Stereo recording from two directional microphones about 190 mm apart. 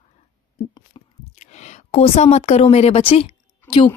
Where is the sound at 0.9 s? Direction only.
35° left (ahead or behind).